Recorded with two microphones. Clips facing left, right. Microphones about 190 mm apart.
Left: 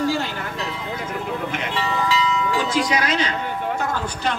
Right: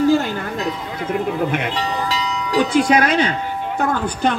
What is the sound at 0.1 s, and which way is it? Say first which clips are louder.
Music: right 7 dB; 50° right (ahead or behind).